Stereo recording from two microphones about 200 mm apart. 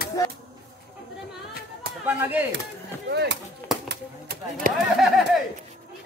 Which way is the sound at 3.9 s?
45° right (ahead or behind).